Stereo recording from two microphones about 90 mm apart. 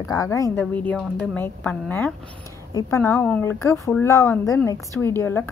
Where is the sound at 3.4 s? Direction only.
30° left (ahead or behind).